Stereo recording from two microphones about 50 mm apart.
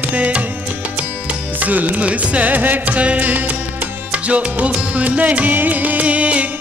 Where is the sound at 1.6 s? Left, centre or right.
Right.